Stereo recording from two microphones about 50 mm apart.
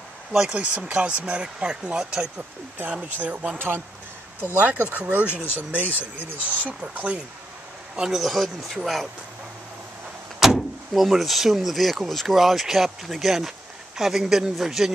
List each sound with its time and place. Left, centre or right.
0.7 s speech: right
3.1 s speech: right
3.5 s speech: right
4.4 s speech: right
5.4 s speech: left
5.7 s speech: right
7.9 s a man's voice: centre
8.2 s speech: centre
10.4 s speech: centre